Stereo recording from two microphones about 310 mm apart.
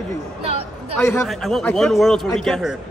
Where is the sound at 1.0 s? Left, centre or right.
Centre.